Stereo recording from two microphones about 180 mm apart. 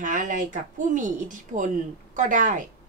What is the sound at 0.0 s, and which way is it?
A woman's voice, 45° right (ahead or behind).